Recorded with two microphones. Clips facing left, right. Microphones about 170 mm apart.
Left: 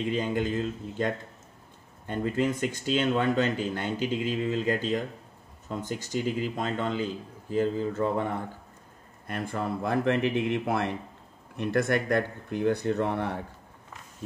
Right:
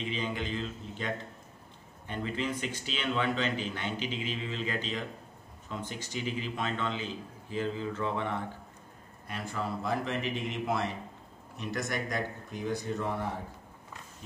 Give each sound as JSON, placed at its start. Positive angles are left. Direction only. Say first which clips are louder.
{"t": 0.0, "sound": "a man's voice", "louder": "left 7 dB", "side_deg": 50}
{"t": 9.3, "sound": "speech", "louder": "left 4 dB", "side_deg": 55}